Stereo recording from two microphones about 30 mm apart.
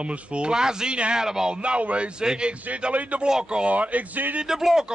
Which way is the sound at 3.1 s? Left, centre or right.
Right.